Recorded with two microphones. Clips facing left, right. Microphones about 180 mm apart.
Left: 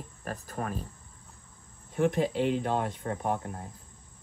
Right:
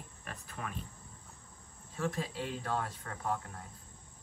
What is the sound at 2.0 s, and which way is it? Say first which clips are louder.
Speech: left 10 dB; 25° left (ahead or behind).